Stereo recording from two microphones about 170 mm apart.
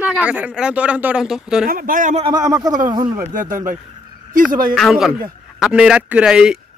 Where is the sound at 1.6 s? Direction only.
60° right (ahead or behind).